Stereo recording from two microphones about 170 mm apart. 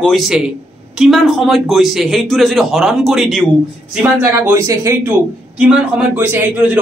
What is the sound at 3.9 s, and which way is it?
A man's voice, 10° right (ahead or behind).